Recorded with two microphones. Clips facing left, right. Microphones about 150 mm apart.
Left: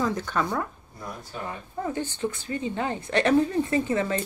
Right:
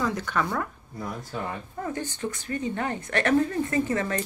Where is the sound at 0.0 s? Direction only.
25° left (ahead or behind).